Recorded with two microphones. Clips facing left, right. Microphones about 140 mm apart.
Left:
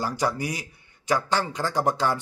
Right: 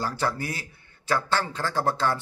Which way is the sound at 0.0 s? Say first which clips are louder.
Left 2 dB; 15° left (ahead or behind).